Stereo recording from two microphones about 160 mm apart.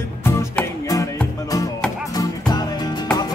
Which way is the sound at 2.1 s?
25° left (ahead or behind).